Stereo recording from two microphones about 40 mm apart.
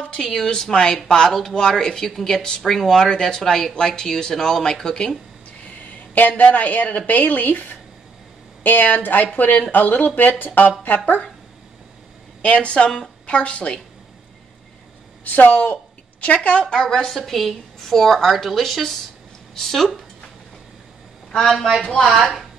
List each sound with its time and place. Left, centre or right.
0.2 s a woman's voice: centre
1.3 s speech: centre
5.9 s a woman's voice: left
12.4 s a woman's voice: left
15.2 s a sound: left
16.3 s a woman's voice: left
17.1 s a woman's voice: centre
21.4 s speech: centre